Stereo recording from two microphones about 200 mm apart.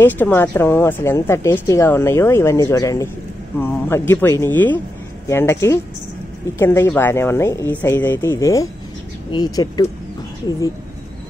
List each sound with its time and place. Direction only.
0.0 s speech: 10° left (ahead or behind)